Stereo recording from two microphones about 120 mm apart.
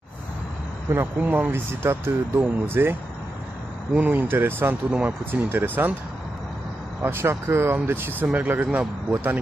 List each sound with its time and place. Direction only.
0.9 s speech: 15° right (ahead or behind)
7.0 s speech: 20° right (ahead or behind)